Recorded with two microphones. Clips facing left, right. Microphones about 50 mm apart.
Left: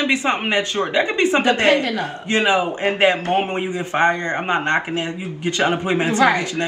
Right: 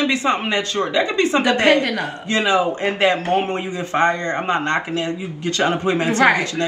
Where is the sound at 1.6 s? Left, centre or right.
Right.